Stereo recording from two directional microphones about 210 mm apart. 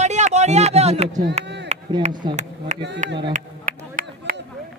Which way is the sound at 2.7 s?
35° right (ahead or behind).